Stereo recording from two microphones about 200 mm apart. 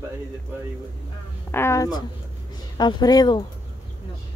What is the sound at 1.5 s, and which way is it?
A woman's voice, 15° left (ahead or behind).